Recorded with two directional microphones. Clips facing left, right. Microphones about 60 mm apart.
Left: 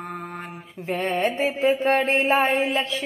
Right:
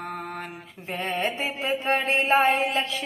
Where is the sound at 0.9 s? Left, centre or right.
Left.